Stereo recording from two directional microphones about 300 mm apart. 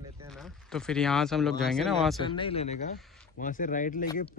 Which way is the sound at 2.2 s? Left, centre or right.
Centre.